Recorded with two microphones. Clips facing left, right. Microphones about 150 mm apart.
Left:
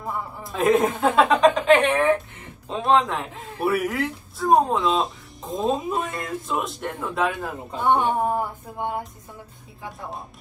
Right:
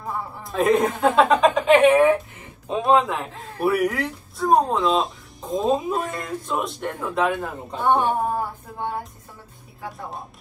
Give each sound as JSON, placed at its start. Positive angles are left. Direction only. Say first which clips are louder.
{"t": 0.4, "sound": "a man's voice", "louder": "even", "side_deg": 0}
{"t": 7.8, "sound": "a sound", "louder": "even", "side_deg": 15}
{"t": 9.8, "sound": "a man's voice", "louder": "right 1 dB", "side_deg": 0}